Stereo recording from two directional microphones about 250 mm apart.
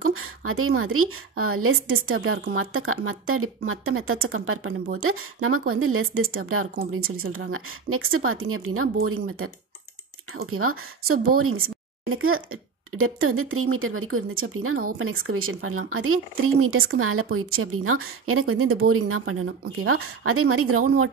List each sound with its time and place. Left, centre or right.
0.5 s speech: right
10.5 s speech: right